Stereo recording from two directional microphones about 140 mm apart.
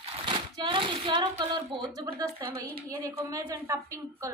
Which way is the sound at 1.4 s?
35° right (ahead or behind).